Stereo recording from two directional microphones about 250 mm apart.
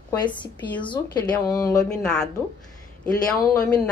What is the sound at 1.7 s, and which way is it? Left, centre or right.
Speech, centre.